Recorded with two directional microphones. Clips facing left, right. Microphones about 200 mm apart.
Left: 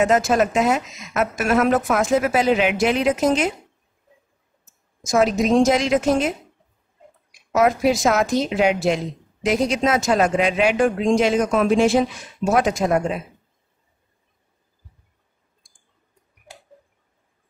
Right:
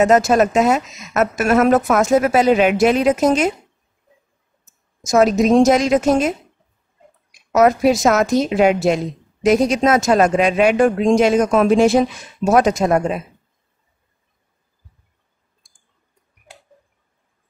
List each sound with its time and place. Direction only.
0.0 s a woman's voice: 40° right (ahead or behind)
5.2 s a woman's voice: 40° right (ahead or behind)
7.5 s a woman's voice: 40° right (ahead or behind)